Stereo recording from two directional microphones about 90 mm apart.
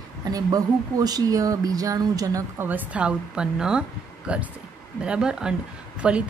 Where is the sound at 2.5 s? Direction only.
20° right (ahead or behind).